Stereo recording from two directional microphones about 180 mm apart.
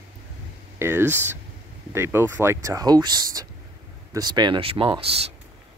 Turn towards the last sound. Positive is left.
turn(degrees=-30)  # may be behind; listen again after turning